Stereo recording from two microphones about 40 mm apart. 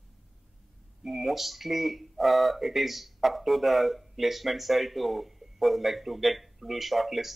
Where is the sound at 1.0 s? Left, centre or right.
Centre.